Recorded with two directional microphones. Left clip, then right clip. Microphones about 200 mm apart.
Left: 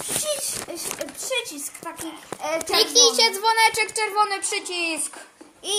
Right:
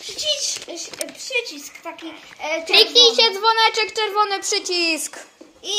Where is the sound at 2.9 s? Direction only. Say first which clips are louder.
Right 1 dB; 15° left (ahead or behind).